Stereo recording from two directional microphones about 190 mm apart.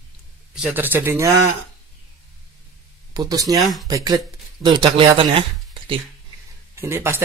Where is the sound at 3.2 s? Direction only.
20° right (ahead or behind).